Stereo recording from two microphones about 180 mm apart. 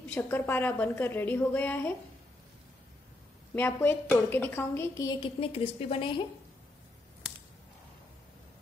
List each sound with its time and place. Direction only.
0.1 s a woman's voice: 10° left (ahead or behind)
3.5 s a woman's voice: 10° left (ahead or behind)
5.4 s a woman's voice: 35° left (ahead or behind)